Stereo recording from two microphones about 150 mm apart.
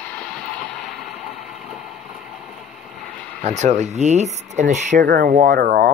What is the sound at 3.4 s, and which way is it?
Speech, 50° right (ahead or behind).